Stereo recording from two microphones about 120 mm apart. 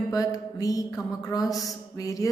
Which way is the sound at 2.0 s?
30° left (ahead or behind).